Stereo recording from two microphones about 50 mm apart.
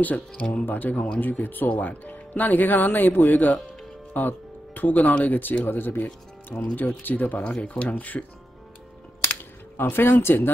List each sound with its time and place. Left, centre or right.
0.4 s speech: left
0.7 s speech: left
5.7 s speech: left
6.5 s speech: left
9.2 s a sound: left